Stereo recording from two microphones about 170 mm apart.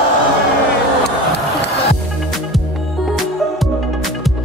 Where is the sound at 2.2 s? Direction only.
Centre (ahead or behind).